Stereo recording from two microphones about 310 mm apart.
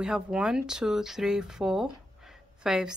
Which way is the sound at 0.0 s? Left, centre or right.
Centre.